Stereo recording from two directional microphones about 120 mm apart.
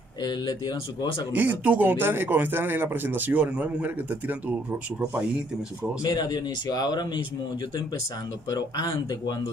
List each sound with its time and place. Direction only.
1.3 s a man's voice: 15° right (ahead or behind)
6.0 s speech: 35° left (ahead or behind)
8.5 s speech: 30° left (ahead or behind)